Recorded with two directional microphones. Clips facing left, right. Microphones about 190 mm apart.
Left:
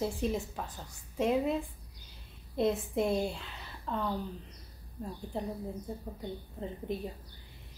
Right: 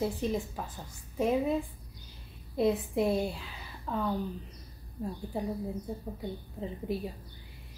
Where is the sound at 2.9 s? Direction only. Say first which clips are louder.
Right 2 dB; centre (ahead or behind).